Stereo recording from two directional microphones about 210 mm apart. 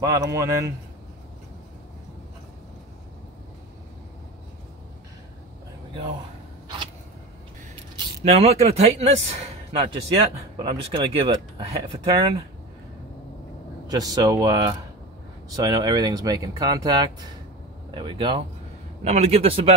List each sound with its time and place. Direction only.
0.0 s speech: 15° right (ahead or behind)
8.2 s a man's voice: 30° right (ahead or behind)
13.8 s a man's voice: 20° right (ahead or behind)